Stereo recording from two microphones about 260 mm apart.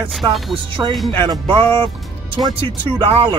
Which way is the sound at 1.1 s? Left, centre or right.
Centre.